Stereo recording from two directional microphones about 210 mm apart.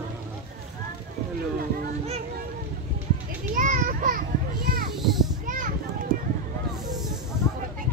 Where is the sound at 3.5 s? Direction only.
40° right (ahead or behind).